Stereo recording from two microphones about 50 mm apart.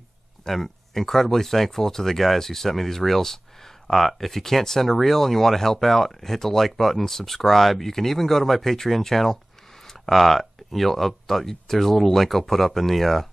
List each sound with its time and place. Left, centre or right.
0.5 s speech: centre